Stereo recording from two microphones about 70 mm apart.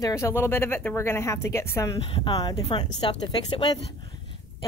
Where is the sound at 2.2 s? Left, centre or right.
Left.